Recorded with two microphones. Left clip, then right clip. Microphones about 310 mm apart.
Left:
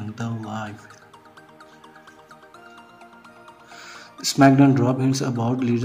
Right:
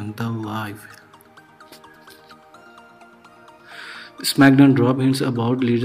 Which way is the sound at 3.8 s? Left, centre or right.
Centre.